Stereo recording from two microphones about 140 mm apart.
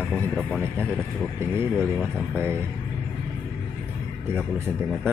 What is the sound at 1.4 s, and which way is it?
Speech, 15° right (ahead or behind).